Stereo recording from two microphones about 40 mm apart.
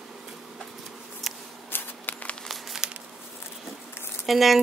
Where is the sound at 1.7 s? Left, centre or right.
Left.